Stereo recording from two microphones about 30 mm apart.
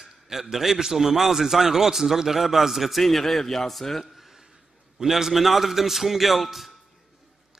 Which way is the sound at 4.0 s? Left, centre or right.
Centre.